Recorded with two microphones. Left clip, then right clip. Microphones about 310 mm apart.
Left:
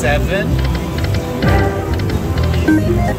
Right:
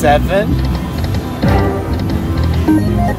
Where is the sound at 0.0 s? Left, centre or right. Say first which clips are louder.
Right 5 dB; centre.